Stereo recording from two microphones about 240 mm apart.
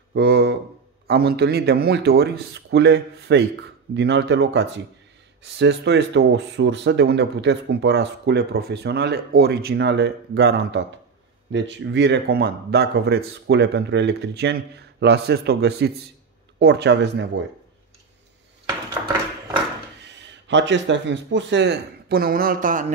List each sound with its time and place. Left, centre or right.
0.1 s speech: right
20.0 s speech: right